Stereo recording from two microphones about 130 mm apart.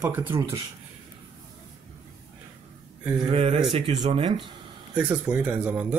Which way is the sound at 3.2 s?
50° right (ahead or behind).